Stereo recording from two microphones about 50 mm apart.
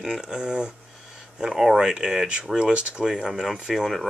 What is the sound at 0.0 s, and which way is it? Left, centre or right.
Speech, centre.